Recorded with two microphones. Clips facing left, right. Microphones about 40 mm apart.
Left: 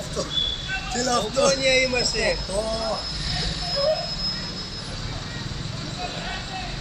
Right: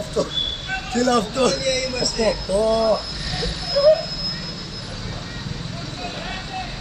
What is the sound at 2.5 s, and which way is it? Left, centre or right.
Speech, centre.